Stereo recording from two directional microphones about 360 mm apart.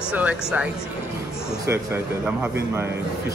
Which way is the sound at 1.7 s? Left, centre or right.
Centre.